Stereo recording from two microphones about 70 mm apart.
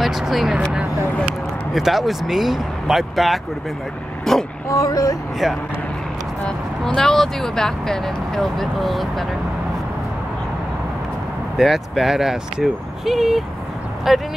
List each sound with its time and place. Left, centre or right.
0.0 s speech: centre
1.7 s speech: centre
4.3 s vehicle: centre
4.6 s speech: left
6.4 s speech: centre
11.5 s speech: centre